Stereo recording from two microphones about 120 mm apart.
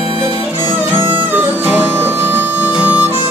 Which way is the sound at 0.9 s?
45° right (ahead or behind).